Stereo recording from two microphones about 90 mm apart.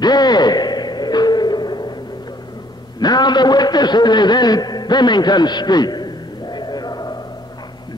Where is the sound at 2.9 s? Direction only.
50° left (ahead or behind).